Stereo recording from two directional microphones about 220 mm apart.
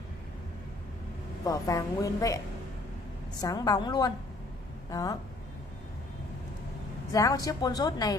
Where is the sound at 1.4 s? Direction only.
15° left (ahead or behind).